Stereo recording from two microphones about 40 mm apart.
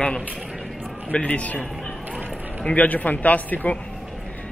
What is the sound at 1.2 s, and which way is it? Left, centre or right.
Speech, left.